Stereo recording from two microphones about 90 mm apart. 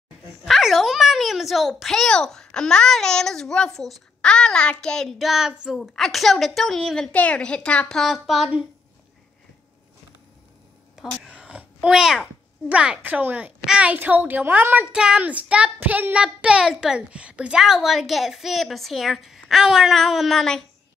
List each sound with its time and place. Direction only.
0.5 s a woman's voice: centre (ahead or behind)
7.9 s speech: centre (ahead or behind)
11.2 s a sound: 10° right (ahead or behind)
12.6 s a child's voice: 15° right (ahead or behind); by 20.6 s 5° left (ahead or behind)